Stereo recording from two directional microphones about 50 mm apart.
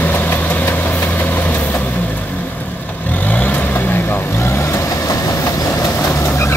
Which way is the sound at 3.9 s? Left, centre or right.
Left.